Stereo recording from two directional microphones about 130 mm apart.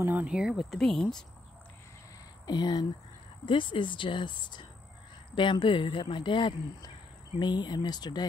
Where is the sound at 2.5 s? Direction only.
30° left (ahead or behind).